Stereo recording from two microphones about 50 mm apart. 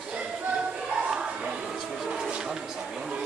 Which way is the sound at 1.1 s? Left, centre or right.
Centre.